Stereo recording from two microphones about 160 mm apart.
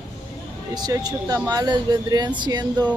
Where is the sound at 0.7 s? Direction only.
25° right (ahead or behind).